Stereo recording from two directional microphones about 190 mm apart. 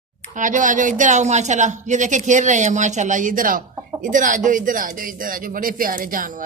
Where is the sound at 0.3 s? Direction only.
40° right (ahead or behind).